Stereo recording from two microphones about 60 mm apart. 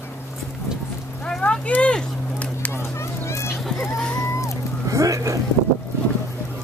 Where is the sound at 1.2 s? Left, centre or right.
Centre.